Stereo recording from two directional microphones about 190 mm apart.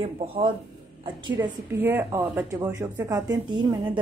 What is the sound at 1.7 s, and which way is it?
A woman's voice, 10° right (ahead or behind).